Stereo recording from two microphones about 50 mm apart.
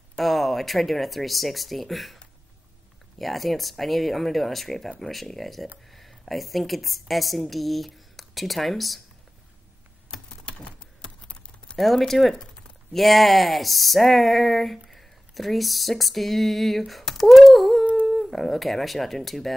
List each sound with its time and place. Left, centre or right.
0.2 s speech: centre
3.2 s a woman's voice: centre
10.4 s typing: left
11.7 s speech: centre
14.9 s a sound: centre
18.0 s speech: centre